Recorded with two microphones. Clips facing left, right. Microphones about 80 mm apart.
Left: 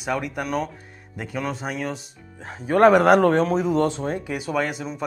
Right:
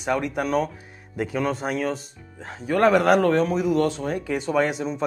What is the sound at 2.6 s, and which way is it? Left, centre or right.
Speech, left.